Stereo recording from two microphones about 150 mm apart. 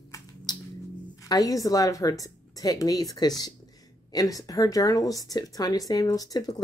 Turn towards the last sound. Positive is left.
turn(degrees=25)  # may be behind; listen again after turning